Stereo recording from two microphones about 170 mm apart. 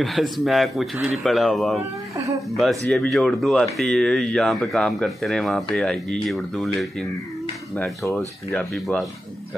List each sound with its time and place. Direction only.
0.0 s speech: centre (ahead or behind)
2.1 s speech: 20° right (ahead or behind)
2.5 s speech: centre (ahead or behind)
8.7 s speech: centre (ahead or behind)